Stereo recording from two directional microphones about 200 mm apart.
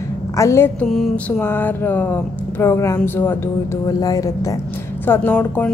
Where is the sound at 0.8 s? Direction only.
Centre (ahead or behind); by 4.6 s 15° left (ahead or behind).